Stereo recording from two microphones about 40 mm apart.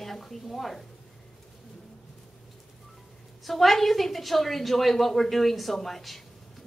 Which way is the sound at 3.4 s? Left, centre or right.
Centre.